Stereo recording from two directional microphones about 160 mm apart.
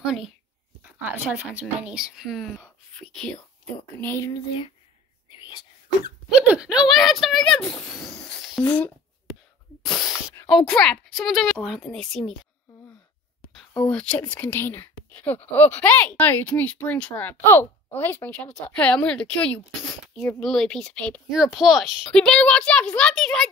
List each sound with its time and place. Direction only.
0.0 s a woman's voice: centre (ahead or behind)
4.0 s a woman's voice: 15° left (ahead or behind)
6.4 s a woman's voice: 5° right (ahead or behind)
7.8 s a sound: centre (ahead or behind)
10.5 s a woman's voice: 5° left (ahead or behind)
13.6 s a woman's voice: 5° left (ahead or behind)